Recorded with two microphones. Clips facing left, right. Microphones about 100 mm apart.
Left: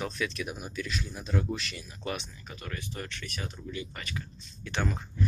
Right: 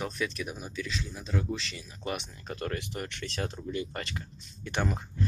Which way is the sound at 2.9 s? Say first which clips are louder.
Right 2 dB; 20° right (ahead or behind).